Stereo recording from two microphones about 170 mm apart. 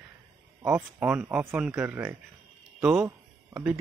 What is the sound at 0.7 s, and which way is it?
Speech, 5° right (ahead or behind).